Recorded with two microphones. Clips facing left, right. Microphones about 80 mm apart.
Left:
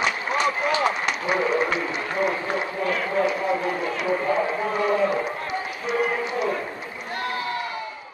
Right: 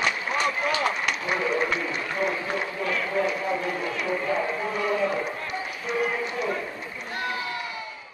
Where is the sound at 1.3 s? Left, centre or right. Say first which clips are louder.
Left 4 dB; left.